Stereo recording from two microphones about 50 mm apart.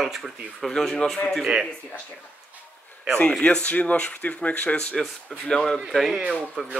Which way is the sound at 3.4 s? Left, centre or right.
Left.